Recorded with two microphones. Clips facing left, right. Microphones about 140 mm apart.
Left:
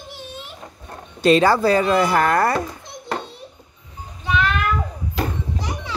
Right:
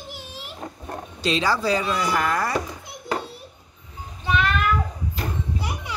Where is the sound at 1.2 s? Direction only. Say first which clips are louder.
Left 8 dB; 55° left (ahead or behind).